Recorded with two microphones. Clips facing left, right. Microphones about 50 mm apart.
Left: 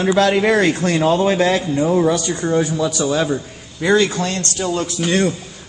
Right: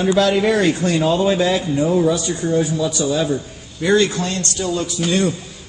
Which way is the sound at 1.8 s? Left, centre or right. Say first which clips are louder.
Left 1 dB; left.